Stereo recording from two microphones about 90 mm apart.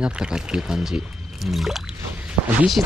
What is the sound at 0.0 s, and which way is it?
Speech, 10° right (ahead or behind).